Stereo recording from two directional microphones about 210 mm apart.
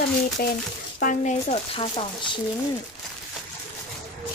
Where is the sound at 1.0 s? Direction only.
35° left (ahead or behind).